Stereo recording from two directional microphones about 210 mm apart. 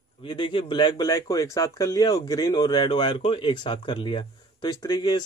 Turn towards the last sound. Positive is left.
turn(degrees=20)  # may be behind; listen again after turning